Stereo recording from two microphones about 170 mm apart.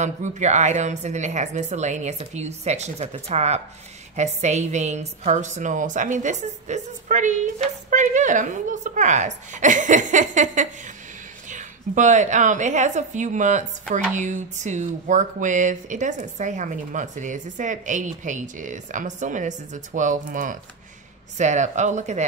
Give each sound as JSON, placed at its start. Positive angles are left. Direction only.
{"t": 0.0, "sound": "a woman's voice", "side_deg": -45}